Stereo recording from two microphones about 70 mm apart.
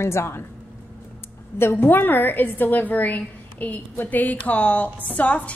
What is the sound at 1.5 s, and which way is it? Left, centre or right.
A woman's voice, left.